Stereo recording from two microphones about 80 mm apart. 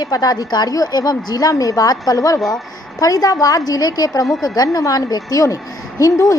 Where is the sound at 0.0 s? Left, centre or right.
Left.